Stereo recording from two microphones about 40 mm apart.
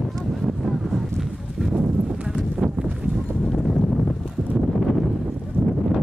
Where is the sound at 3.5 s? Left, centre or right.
Centre.